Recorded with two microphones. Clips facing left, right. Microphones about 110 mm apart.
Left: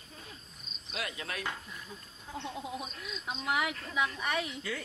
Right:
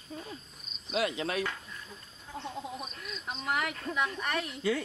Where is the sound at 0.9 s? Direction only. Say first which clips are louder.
Right 8 dB; 25° right (ahead or behind).